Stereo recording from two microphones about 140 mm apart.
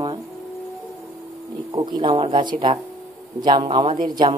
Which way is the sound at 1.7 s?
30° right (ahead or behind).